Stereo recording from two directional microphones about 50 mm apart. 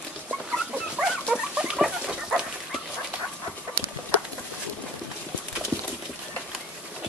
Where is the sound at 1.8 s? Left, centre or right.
Centre.